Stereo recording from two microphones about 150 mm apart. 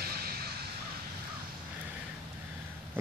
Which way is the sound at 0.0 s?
90° right.